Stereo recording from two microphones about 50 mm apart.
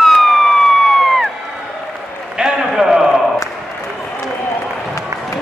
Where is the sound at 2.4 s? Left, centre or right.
Centre.